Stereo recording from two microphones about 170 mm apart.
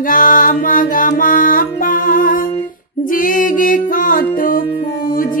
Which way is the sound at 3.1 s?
50° left (ahead or behind).